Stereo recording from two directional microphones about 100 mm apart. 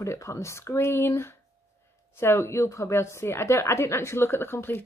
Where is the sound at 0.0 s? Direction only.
30° left (ahead or behind).